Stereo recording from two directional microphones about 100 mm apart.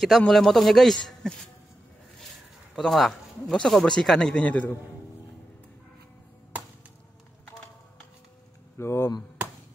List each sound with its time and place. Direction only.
0.0 s a man's voice: 5° left (ahead or behind)
2.7 s speech: centre (ahead or behind)
8.7 s speech: 25° left (ahead or behind)